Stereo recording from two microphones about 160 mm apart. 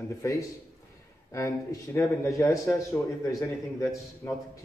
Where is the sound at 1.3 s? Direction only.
20° left (ahead or behind).